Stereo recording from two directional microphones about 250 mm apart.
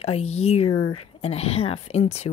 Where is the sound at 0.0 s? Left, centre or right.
Left.